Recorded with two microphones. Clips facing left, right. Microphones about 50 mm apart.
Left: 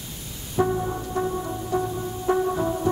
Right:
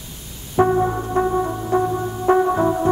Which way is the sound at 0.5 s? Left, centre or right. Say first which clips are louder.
Right 7 dB; right.